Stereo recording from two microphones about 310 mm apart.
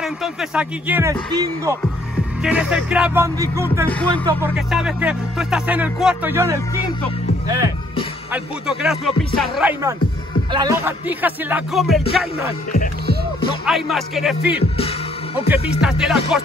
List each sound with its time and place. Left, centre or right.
0.0 s speech: centre
1.3 s music: centre
2.4 s speech: centre
3.9 s speech: centre
7.4 s music: centre
8.3 s speech: centre
13.7 s speech: centre
14.8 s music: centre
15.8 s speech: centre